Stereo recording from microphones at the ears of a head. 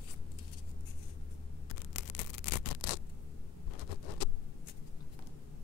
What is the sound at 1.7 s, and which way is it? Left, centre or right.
Toothbrush, left.